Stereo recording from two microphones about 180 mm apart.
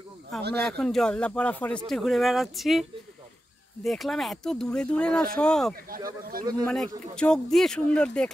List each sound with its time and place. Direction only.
0.6 s speech: 5° left (ahead or behind)
5.9 s speech: 50° right (ahead or behind)
6.6 s speech: 5° left (ahead or behind)